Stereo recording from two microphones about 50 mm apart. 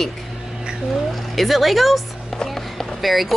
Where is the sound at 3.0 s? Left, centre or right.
Centre.